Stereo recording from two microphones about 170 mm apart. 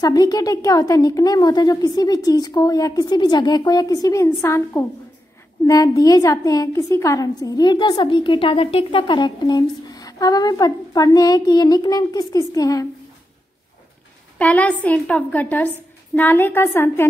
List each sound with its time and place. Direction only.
0.0 s a woman's voice: 20° left (ahead or behind)
14.4 s a woman's voice: 10° left (ahead or behind)